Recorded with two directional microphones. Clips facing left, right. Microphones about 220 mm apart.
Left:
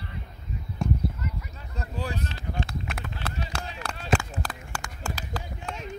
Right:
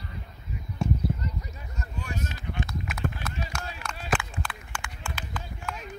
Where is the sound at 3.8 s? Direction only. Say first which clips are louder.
Left 4 dB; 35° left (ahead or behind).